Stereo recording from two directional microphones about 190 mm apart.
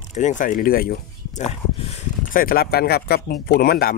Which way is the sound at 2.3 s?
50° left (ahead or behind).